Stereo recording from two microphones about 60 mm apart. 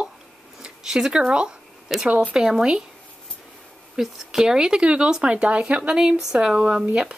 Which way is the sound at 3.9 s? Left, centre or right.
Centre.